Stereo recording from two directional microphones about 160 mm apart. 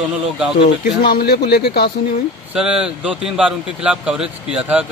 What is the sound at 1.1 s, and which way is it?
Speech, 85° left.